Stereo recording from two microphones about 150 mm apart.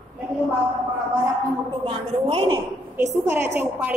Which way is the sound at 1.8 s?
40° right (ahead or behind).